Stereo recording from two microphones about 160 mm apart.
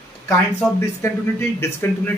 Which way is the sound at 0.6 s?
Centre (ahead or behind).